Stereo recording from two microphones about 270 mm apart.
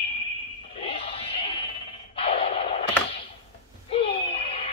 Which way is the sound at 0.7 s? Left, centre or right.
Left.